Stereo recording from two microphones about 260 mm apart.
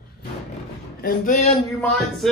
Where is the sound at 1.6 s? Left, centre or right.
Centre.